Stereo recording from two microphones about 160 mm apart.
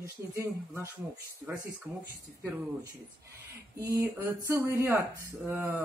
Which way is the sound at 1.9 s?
10° right (ahead or behind).